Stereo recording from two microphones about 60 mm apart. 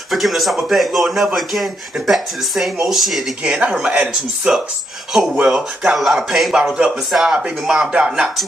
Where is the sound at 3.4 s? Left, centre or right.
Right.